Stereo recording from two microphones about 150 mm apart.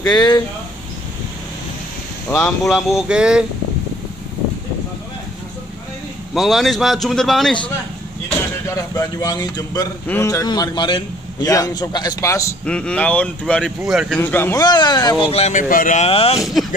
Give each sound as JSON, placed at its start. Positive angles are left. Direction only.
{"t": 0.0, "sound": "a man's voice", "side_deg": 25}
{"t": 2.4, "sound": "speech", "side_deg": 0}
{"t": 6.3, "sound": "speech", "side_deg": 0}
{"t": 8.6, "sound": "a man's voice", "side_deg": 20}
{"t": 12.6, "sound": "speech", "side_deg": 10}
{"t": 14.2, "sound": "speech", "side_deg": 15}
{"t": 14.6, "sound": "a man's voice", "side_deg": 30}
{"t": 15.7, "sound": "speech", "side_deg": 65}
{"t": 16.0, "sound": "speech", "side_deg": 40}
{"t": 16.6, "sound": "a sound", "side_deg": 0}